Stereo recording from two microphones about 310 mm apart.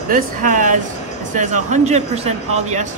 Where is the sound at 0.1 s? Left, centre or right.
Right.